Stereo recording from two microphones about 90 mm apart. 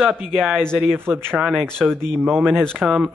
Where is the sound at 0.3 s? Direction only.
Centre (ahead or behind).